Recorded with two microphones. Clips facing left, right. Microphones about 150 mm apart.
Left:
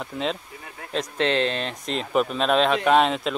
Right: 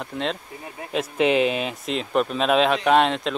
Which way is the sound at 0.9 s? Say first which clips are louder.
Right 3 dB; 10° right (ahead or behind).